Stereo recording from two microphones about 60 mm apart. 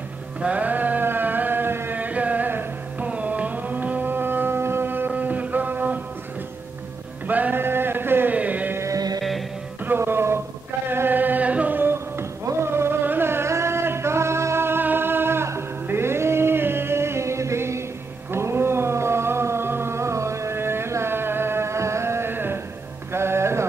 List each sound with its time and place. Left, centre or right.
0.4 s music: right
2.0 s music: right
3.1 s a sound: right
7.2 s music: right
7.6 s a sound: right
8.4 s music: right
8.9 s music: right
9.8 s music: right
18.3 s a sound: right
23.1 s music: right